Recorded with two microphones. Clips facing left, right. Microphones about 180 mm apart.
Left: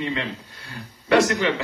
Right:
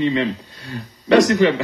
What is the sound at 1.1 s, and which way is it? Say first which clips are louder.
Speech: right 5 dB; 20° right (ahead or behind).